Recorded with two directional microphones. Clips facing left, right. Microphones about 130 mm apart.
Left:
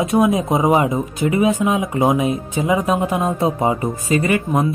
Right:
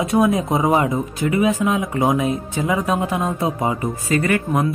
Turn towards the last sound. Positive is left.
turn(degrees=20)  # may be behind; listen again after turning